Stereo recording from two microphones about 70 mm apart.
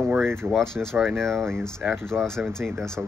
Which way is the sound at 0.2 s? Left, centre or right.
Right.